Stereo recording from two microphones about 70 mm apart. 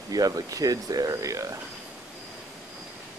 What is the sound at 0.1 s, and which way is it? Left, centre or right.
Speech, right.